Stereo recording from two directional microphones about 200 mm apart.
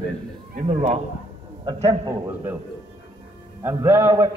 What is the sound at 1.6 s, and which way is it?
Speech, 20° right (ahead or behind).